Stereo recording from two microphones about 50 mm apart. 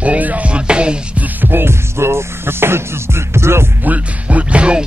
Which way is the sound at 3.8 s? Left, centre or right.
Right.